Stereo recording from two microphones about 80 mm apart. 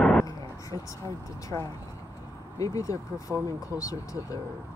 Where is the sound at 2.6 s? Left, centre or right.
Left.